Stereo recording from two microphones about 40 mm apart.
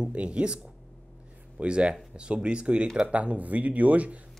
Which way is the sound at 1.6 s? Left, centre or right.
Right.